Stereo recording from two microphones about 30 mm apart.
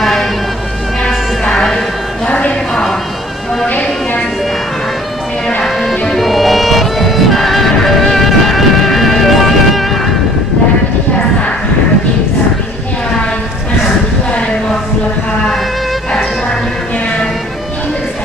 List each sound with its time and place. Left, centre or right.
0.0 s music: centre
1.0 s music: left
2.7 s a sound: centre
5.8 s music: centre